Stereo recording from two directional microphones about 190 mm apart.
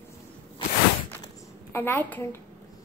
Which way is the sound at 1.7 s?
10° left (ahead or behind).